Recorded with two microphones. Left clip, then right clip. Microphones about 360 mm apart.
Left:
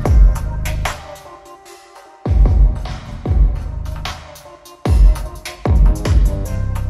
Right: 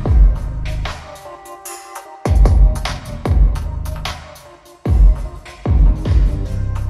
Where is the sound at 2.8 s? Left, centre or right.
Right.